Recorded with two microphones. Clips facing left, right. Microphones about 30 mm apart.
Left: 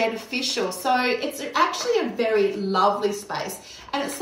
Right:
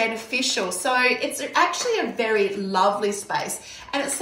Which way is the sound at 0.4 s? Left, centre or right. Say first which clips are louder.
Right 2 dB; right.